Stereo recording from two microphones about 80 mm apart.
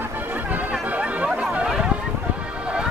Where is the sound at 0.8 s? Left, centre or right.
Centre.